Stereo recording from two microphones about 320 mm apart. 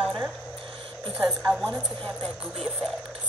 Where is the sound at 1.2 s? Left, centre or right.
Centre.